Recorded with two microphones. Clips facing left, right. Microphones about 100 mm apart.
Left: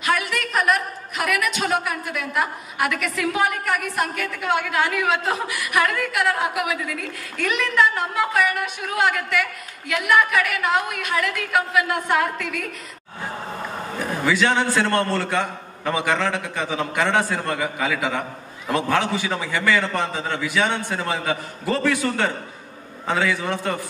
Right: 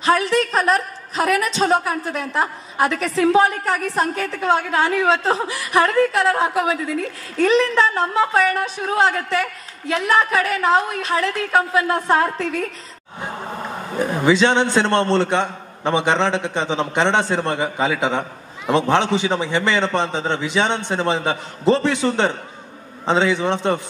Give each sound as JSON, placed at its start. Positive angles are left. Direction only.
{"t": 0.0, "sound": "a man's voice", "side_deg": -30}
{"t": 13.9, "sound": "a man's voice", "side_deg": -25}